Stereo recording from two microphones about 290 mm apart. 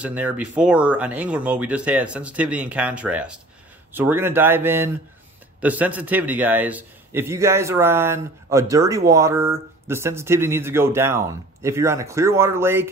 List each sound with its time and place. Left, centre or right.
0.0 s speech: centre